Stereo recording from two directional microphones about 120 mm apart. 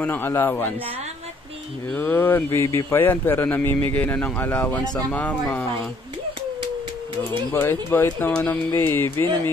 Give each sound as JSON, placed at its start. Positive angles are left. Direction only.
{"t": 0.0, "sound": "speech", "side_deg": 15}
{"t": 1.9, "sound": "speech", "side_deg": 15}
{"t": 7.5, "sound": "speech", "side_deg": 20}